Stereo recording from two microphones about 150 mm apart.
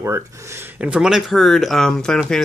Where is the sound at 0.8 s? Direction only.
5° right (ahead or behind).